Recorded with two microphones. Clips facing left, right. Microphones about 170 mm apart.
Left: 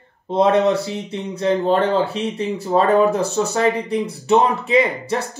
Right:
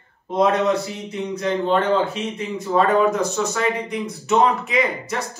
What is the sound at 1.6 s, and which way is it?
Speech, 40° left (ahead or behind).